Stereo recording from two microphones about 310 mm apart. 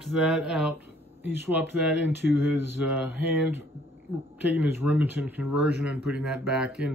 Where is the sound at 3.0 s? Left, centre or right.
Centre.